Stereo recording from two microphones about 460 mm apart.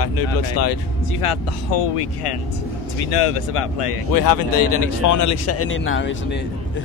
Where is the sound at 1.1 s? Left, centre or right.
Left.